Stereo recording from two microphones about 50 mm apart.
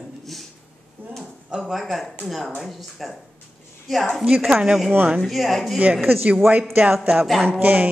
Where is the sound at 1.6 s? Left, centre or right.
Centre.